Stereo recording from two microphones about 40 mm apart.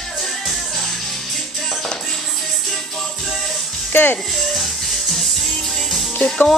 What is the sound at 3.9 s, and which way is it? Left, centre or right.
Music, left.